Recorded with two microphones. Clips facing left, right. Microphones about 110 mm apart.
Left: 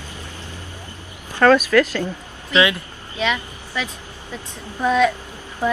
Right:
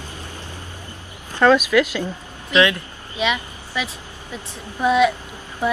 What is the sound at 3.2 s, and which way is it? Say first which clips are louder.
A woman's voice: even; 15° right (ahead or behind).